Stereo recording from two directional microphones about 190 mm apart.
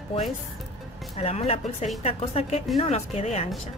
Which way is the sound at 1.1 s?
35° left (ahead or behind).